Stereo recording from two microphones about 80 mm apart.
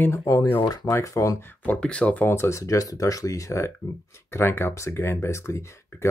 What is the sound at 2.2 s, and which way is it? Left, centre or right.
Speech, left.